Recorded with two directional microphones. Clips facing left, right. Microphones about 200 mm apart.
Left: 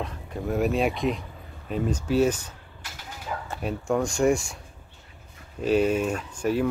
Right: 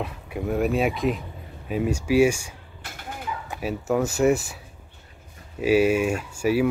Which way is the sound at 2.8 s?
55° right (ahead or behind).